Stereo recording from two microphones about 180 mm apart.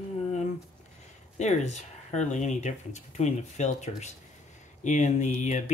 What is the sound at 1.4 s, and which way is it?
Speech, 40° left (ahead or behind).